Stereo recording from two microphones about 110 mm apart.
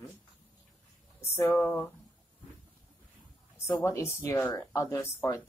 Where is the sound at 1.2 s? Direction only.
30° left (ahead or behind).